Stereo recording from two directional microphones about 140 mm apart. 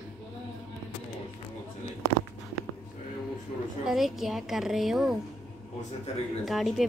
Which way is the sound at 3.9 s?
Centre (ahead or behind).